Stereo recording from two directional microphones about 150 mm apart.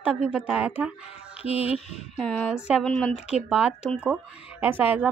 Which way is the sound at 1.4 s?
40° left (ahead or behind).